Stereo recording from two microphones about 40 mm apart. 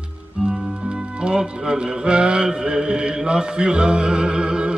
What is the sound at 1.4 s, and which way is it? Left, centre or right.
Mantra, right.